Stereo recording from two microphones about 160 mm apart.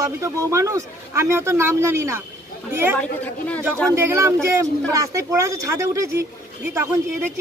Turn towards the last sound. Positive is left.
turn(degrees=-15)  # may be behind; listen again after turning